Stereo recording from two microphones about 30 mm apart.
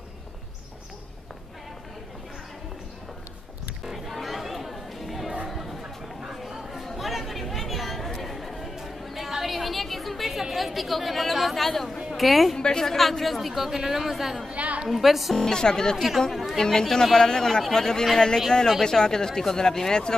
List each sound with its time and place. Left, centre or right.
3.8 s music: centre
5.5 s chatter: centre
6.2 s a sound: centre
7.0 s chatter: centre
11.6 s speech: centre
14.5 s a sound: right
14.9 s speech: centre
15.3 s speech: centre
16.3 s speech: centre
16.6 s speech: centre